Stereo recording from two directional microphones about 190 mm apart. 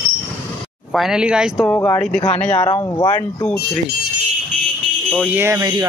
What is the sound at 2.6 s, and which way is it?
Speech, 20° left (ahead or behind).